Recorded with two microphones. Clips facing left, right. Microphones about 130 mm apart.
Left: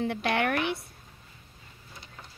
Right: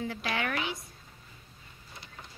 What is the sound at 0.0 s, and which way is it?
Speech, 60° left (ahead or behind).